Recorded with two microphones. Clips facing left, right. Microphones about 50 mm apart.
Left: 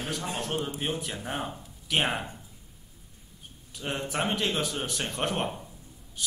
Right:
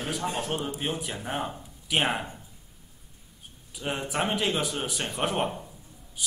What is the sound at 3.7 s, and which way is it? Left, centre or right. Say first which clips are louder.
A man's voice: right 1 dB; centre.